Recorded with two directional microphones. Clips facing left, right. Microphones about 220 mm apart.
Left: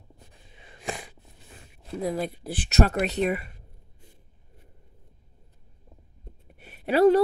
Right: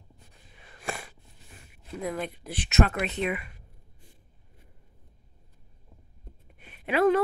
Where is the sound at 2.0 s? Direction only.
35° left (ahead or behind).